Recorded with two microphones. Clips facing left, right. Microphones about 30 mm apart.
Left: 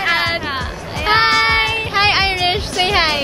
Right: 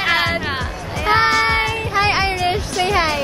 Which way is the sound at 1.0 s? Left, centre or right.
Left.